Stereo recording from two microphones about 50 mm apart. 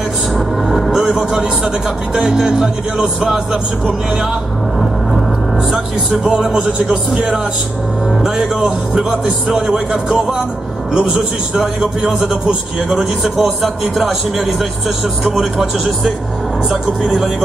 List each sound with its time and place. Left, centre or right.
0.7 s music: centre
1.0 s speech: centre
6.2 s speech: centre
8.2 s speech: centre
11.6 s speech: centre
12.9 s a man's voice: centre
15.2 s a man's voice: centre